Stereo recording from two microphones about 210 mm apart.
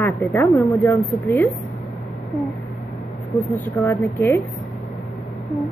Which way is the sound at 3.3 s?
15° left (ahead or behind).